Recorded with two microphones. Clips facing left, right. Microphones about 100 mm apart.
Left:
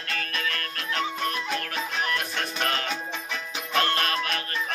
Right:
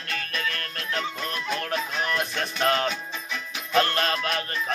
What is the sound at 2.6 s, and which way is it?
Music, 30° right (ahead or behind).